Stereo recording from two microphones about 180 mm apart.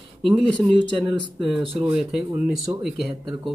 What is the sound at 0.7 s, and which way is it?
Speech, 25° right (ahead or behind).